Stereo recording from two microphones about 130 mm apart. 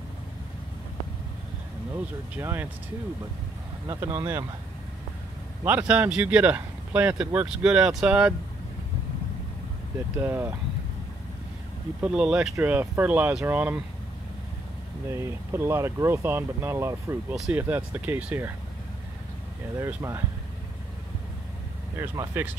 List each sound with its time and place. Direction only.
2.3 s speech: 15° right (ahead or behind)
4.0 s speech: 20° right (ahead or behind)
5.7 s speech: 10° right (ahead or behind)
10.1 s speech: 15° right (ahead or behind)
12.0 s speech: 5° right (ahead or behind)
15.0 s speech: 20° right (ahead or behind)
19.8 s speech: 20° right (ahead or behind)
22.3 s speech: 15° right (ahead or behind)